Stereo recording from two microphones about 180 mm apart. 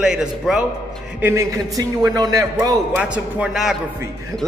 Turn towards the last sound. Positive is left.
turn(degrees=-5)  # may be behind; listen again after turning